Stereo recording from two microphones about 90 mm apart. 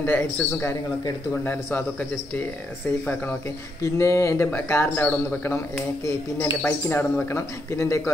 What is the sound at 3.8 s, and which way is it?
Speech, 35° left (ahead or behind).